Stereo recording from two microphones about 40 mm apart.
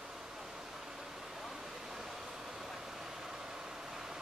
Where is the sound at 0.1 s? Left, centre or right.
Centre.